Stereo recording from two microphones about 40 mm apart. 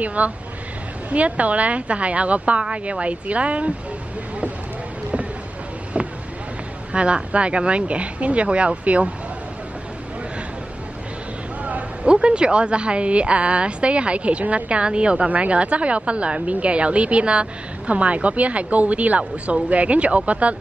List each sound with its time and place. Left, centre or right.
0.0 s a woman's voice: right
5.9 s vehicle: right
6.9 s a woman's voice: right
11.6 s a woman's voice: right